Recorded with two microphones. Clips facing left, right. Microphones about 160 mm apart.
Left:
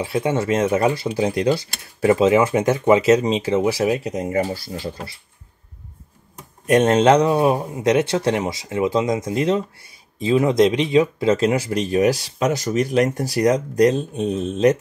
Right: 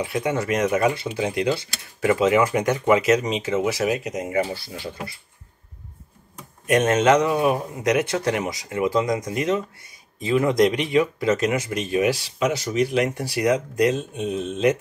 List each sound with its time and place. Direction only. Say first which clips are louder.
0.0 s speech: left 3 dB; 30° left (ahead or behind)
6.7 s speech: left 3 dB; 30° left (ahead or behind)